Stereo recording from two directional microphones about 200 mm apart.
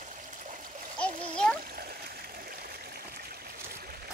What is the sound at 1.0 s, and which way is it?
Splash, 5° left (ahead or behind).